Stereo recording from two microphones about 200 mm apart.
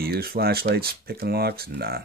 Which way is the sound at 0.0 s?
50° right (ahead or behind).